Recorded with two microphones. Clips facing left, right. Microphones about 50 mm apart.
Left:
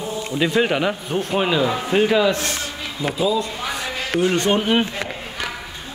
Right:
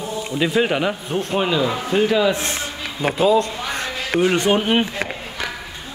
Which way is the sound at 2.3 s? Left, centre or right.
Right.